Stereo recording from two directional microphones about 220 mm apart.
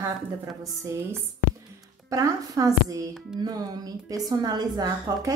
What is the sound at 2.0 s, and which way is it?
Speech, 15° right (ahead or behind).